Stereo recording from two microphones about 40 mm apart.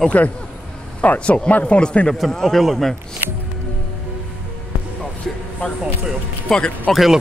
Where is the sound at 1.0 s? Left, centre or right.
Left.